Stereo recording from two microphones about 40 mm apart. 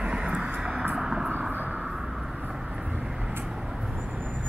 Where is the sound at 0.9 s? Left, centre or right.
Centre.